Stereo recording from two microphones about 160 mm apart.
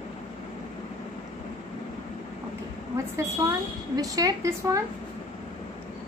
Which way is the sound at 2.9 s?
20° right (ahead or behind).